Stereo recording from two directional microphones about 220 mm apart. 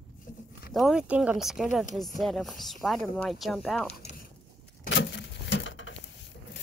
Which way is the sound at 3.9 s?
30° left (ahead or behind).